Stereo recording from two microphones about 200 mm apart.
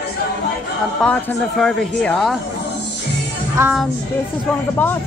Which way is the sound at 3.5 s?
10° right (ahead or behind).